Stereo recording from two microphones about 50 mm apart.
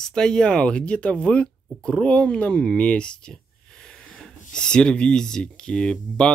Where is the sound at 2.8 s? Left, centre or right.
Left.